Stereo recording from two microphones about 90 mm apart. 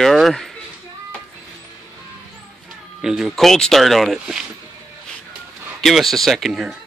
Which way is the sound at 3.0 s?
5° right (ahead or behind).